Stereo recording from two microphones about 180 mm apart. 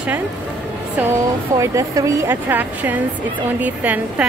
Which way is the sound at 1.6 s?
15° right (ahead or behind).